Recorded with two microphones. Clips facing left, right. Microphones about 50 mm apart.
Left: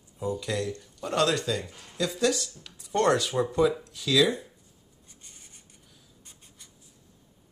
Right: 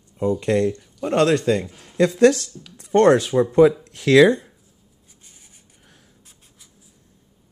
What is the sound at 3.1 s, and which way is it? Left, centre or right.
Speech, right.